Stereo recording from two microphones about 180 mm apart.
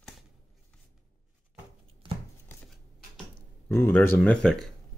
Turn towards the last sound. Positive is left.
turn(degrees=0)  # may be behind; listen again after turning